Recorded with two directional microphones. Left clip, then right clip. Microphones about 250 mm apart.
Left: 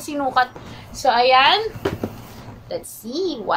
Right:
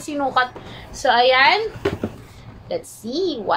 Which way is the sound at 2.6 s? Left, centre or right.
Centre.